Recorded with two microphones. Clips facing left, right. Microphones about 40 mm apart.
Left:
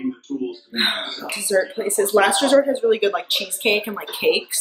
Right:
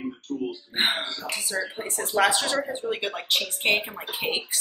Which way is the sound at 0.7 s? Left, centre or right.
Left.